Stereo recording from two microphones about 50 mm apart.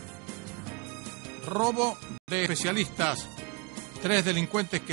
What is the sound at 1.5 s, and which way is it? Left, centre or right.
A man's voice, right.